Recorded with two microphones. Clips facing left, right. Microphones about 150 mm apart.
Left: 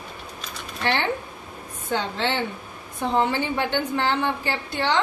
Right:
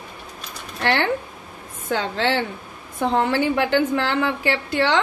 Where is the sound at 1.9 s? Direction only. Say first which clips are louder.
Right 3 dB; 90° right.